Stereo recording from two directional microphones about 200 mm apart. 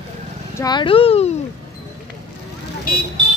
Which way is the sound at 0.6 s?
20° left (ahead or behind).